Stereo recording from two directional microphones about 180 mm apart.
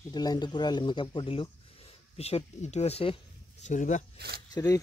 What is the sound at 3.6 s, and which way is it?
Speech, 45° left (ahead or behind).